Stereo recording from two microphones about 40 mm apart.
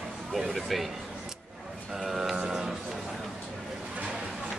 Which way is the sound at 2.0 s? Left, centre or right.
Centre.